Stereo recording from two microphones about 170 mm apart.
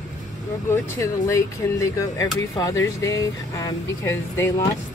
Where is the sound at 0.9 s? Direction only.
20° left (ahead or behind).